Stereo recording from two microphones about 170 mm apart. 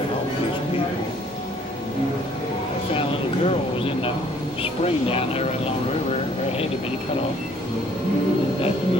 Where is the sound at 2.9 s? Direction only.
35° left (ahead or behind).